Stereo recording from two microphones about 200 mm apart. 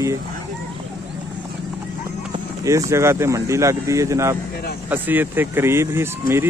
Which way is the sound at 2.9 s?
15° right (ahead or behind).